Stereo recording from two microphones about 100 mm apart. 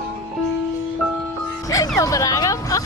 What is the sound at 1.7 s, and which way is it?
Music, 35° left (ahead or behind).